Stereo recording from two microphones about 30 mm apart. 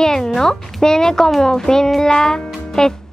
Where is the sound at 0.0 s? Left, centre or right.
Centre.